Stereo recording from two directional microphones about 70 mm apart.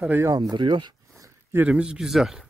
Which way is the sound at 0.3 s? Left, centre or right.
Right.